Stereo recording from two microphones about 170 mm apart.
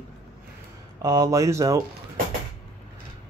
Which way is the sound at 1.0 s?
20° right (ahead or behind).